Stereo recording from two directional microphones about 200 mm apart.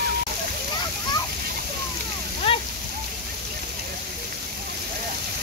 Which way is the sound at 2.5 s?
30° left (ahead or behind).